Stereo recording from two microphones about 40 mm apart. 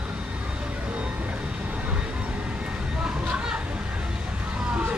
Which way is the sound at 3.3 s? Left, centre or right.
Right.